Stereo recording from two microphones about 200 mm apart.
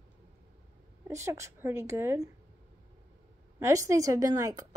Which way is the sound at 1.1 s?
15° right (ahead or behind).